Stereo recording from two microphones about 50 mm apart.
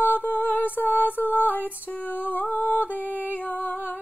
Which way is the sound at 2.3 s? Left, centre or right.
Left.